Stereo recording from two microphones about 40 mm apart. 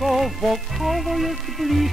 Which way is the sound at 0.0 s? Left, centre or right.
Centre.